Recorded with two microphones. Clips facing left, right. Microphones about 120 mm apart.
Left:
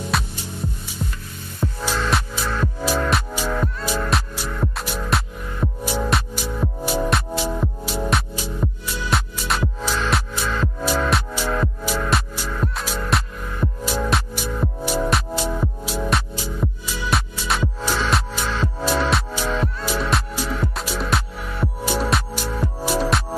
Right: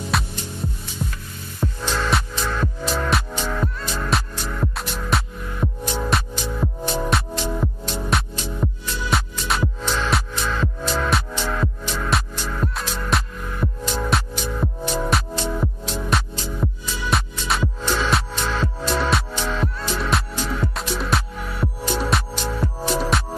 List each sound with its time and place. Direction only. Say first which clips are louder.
0.1 s music: right 2 dB; centre (ahead or behind)